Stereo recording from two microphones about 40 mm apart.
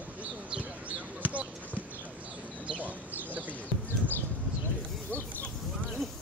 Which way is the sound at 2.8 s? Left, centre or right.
Right.